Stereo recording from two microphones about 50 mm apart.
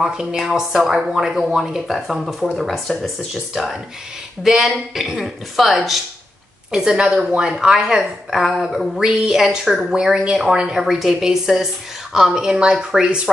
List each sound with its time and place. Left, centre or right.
0.0 s a woman's voice: centre
3.5 s a woman's voice: centre